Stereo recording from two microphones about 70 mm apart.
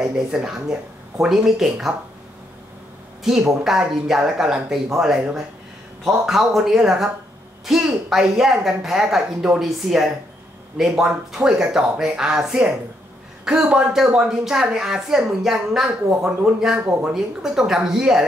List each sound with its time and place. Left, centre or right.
0.0 s speech: centre
3.3 s speech: centre